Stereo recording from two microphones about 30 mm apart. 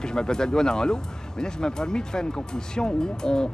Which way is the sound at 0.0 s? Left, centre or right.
Left.